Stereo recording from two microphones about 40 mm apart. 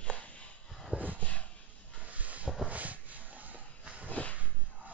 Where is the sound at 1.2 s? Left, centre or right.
Left.